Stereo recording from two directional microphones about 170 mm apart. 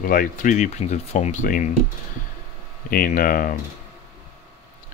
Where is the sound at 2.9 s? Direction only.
55° left (ahead or behind).